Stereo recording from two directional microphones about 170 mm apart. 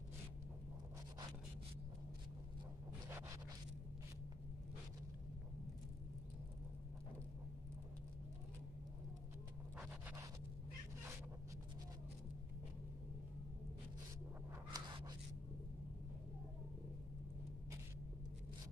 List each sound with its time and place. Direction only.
3.1 s zipper: 15° right (ahead or behind)
9.8 s scratch: 10° right (ahead or behind)
14.7 s a sound: 25° right (ahead or behind)